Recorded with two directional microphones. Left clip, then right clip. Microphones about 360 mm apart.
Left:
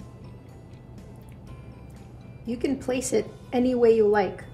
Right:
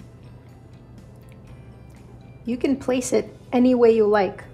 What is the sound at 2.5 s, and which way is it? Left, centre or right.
A woman's voice, centre.